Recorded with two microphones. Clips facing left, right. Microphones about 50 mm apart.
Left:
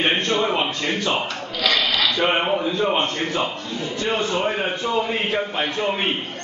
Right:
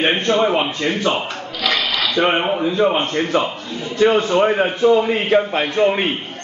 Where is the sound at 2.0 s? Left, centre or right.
Centre.